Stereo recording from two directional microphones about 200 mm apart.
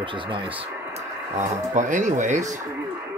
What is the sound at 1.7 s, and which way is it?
Speech, 40° right (ahead or behind).